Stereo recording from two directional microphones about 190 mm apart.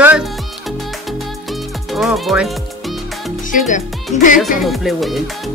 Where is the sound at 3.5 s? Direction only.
40° left (ahead or behind).